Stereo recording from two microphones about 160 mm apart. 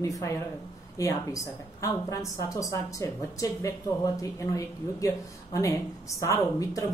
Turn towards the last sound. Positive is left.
turn(degrees=20)  # may be behind; listen again after turning